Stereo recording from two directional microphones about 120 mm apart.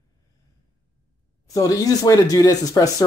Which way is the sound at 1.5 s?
30° left (ahead or behind).